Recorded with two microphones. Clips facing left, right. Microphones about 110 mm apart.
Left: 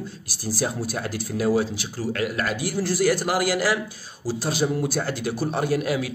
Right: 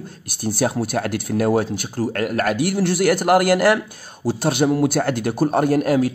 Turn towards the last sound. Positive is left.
turn(degrees=-45)  # may be behind; listen again after turning